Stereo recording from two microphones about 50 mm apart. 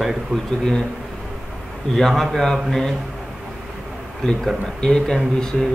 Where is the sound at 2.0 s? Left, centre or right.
Centre.